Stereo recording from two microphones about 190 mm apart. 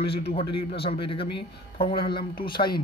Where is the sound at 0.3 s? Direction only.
30° left (ahead or behind).